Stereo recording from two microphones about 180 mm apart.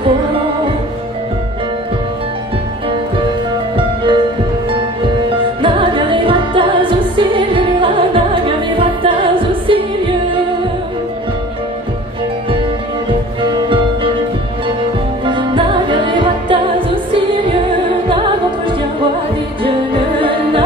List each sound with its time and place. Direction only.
3.7 s music: 25° right (ahead or behind)
5.6 s music: 30° right (ahead or behind)
15.2 s music: 25° right (ahead or behind)
20.2 s music: 30° right (ahead or behind)